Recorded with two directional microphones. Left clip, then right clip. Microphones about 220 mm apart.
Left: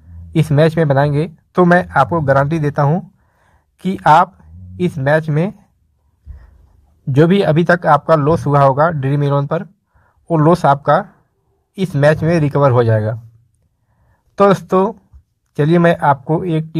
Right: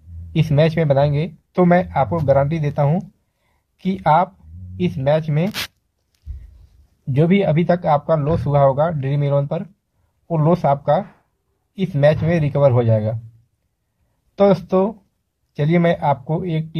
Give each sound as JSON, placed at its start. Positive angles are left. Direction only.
{"t": 0.3, "sound": "speech", "side_deg": 15}
{"t": 7.1, "sound": "speech", "side_deg": 15}
{"t": 14.3, "sound": "speech", "side_deg": 15}